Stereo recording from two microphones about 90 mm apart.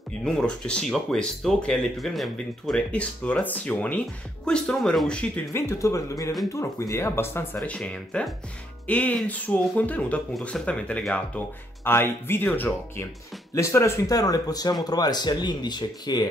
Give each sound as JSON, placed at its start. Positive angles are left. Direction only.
{"t": 0.2, "sound": "speech", "side_deg": 10}
{"t": 5.5, "sound": "speech", "side_deg": 35}
{"t": 7.6, "sound": "speech", "side_deg": 10}
{"t": 13.6, "sound": "speech", "side_deg": 35}